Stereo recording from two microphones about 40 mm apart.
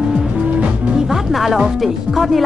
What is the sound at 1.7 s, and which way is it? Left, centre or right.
Speech, centre.